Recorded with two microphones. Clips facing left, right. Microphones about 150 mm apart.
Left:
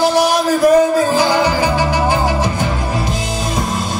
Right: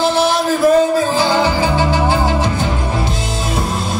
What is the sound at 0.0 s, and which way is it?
Music, 15° left (ahead or behind).